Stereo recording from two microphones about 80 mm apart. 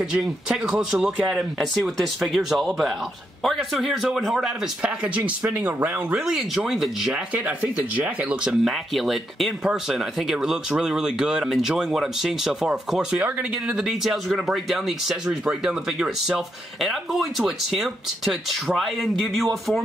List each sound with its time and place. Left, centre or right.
0.1 s speech: centre
4.8 s speech: centre
6.1 s speech: centre
7.3 s speech: centre
8.5 s speech: centre